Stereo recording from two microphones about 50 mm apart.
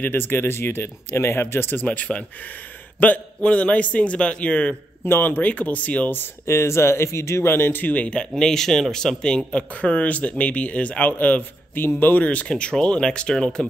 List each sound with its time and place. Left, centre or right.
0.0 s speech: left
1.8 s speech: left
5.0 s speech: left
6.4 s speech: left
7.4 s speech: left
7.9 s speech: left
8.4 s speech: centre
9.5 s speech: left
12.3 s speech: left